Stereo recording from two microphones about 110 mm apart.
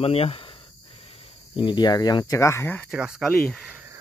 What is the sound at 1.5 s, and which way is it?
Speech, 45° left (ahead or behind).